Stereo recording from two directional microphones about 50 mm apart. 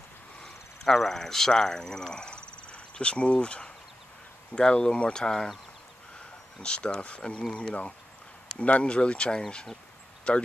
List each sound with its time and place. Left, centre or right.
0.8 s speech: centre
6.6 s speech: centre